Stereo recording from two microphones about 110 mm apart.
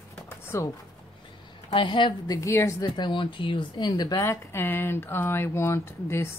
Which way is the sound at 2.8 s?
40° left (ahead or behind).